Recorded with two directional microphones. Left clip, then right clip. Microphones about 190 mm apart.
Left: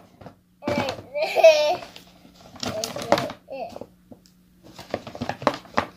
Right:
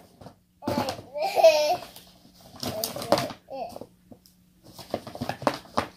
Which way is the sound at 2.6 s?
5° right (ahead or behind).